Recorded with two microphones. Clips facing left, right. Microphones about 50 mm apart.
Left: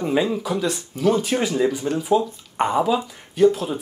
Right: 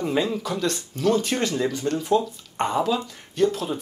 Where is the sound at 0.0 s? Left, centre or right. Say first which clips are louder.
Left 3 dB; centre.